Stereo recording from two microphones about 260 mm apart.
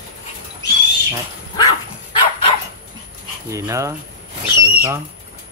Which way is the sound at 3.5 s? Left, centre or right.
Centre.